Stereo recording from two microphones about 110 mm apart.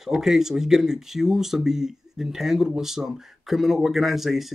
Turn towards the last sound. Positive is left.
turn(degrees=0)  # may be behind; listen again after turning